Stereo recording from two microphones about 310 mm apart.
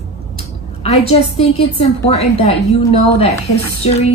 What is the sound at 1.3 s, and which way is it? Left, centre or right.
Speech, centre.